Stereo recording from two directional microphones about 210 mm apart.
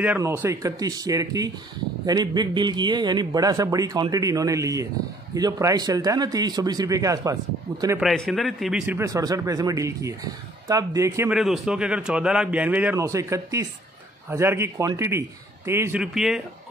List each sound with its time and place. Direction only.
0.0 s a man's voice: 10° right (ahead or behind)
8.0 s a man's voice: centre (ahead or behind)
11.3 s a man's voice: centre (ahead or behind)